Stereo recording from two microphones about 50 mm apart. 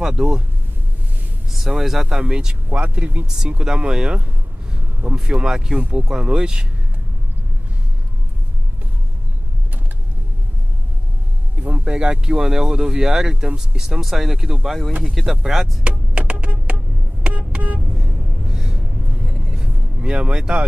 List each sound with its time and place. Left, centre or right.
0.0 s speech: centre
1.7 s speech: centre; by 3.3 s right
3.3 s speech: centre
5.8 s speech: right
6.0 s speech: centre
11.6 s speech: right; by 15.8 s centre
15.8 s music: right
17.3 s vehicle: right
17.9 s gasp: centre
19.5 s vehicle: centre